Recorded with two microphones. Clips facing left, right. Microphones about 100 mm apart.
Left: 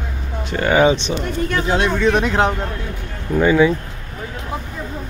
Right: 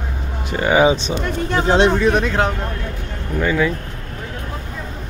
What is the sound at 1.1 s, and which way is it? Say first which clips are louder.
Speech: even; 30° right (ahead or behind).